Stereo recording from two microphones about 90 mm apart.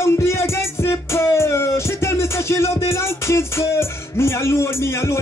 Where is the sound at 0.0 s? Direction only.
30° left (ahead or behind).